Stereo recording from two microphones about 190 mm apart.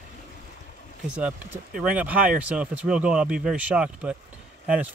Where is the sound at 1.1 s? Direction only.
10° right (ahead or behind).